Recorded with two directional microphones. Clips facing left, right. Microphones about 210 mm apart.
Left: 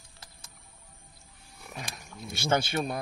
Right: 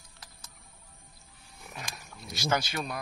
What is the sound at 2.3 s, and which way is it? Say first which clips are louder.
Speech: left 3 dB; 30° left (ahead or behind).